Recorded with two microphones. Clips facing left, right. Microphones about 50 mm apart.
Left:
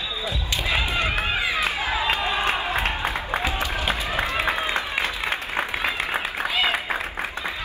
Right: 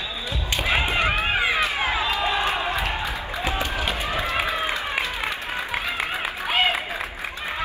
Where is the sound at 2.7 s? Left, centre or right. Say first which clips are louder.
Left 1 dB; left.